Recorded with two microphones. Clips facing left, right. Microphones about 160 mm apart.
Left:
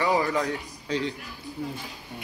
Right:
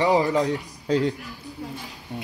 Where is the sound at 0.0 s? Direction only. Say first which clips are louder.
Right 4 dB; 20° right (ahead or behind).